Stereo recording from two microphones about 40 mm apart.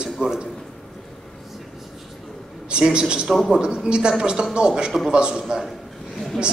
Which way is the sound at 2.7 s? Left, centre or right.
Right.